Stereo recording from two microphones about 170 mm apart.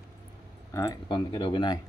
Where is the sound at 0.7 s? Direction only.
20° left (ahead or behind).